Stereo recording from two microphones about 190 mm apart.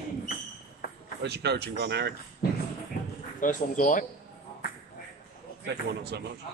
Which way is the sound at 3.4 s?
45° left (ahead or behind).